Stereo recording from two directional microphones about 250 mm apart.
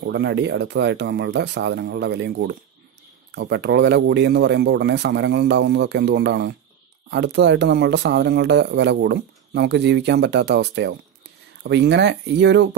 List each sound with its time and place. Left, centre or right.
0.0 s speech: right